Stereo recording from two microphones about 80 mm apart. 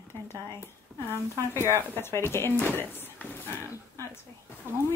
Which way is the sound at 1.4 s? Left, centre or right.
Right.